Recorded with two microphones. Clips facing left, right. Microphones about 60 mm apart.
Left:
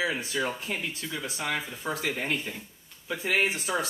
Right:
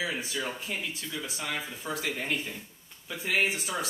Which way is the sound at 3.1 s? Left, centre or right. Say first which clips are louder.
Left 2 dB; left.